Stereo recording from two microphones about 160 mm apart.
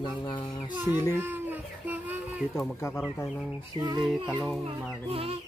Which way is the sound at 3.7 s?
25° right (ahead or behind).